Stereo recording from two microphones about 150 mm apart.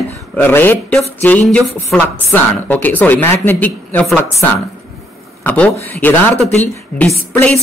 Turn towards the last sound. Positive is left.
turn(degrees=10)  # may be behind; listen again after turning